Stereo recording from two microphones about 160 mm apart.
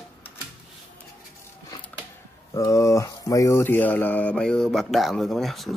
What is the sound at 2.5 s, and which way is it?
Speech, 20° left (ahead or behind).